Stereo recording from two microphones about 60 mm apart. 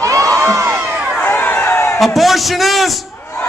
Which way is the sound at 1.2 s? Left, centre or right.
Left.